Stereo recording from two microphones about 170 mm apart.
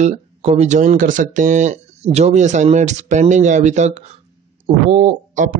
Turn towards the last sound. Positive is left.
turn(degrees=-50)  # may be behind; listen again after turning